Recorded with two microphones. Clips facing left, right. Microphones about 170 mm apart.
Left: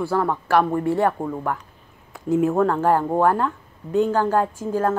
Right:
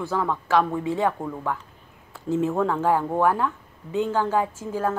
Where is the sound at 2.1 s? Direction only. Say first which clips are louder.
Left 4 dB; 15° left (ahead or behind).